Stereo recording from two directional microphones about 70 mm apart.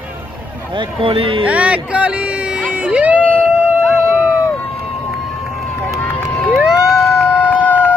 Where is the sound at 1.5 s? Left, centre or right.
Centre.